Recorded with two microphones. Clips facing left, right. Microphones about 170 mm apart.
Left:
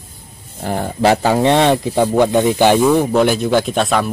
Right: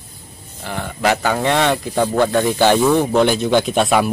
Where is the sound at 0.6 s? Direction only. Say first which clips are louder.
Left 5 dB; 40° left (ahead or behind).